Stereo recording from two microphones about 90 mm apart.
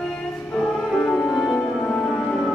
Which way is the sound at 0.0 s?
10° left (ahead or behind).